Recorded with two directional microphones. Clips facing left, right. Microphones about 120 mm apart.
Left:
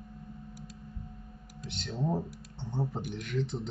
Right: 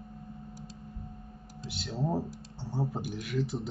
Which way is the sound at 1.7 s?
5° right (ahead or behind).